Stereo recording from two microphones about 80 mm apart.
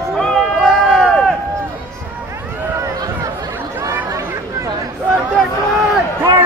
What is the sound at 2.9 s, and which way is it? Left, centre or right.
Chatter, right.